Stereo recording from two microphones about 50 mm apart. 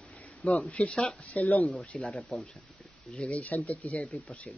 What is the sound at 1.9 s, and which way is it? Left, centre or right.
Speech, centre.